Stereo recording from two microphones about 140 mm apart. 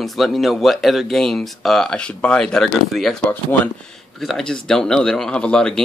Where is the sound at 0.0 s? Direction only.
Centre (ahead or behind).